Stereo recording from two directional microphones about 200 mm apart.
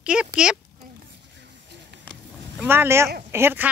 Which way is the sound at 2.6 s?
10° right (ahead or behind).